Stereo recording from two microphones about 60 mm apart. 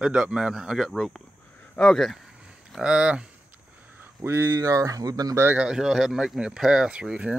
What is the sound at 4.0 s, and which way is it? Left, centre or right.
Speech, right.